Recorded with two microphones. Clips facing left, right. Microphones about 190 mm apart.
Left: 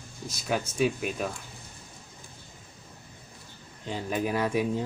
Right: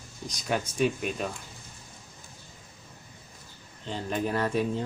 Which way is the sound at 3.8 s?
10° left (ahead or behind).